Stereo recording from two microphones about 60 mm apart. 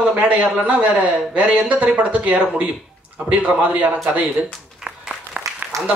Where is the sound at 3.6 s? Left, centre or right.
Right.